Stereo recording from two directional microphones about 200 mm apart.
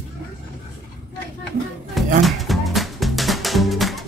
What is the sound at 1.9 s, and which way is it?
Music, centre (ahead or behind).